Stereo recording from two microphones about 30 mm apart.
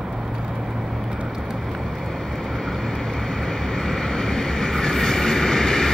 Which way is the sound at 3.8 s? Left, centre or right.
Left.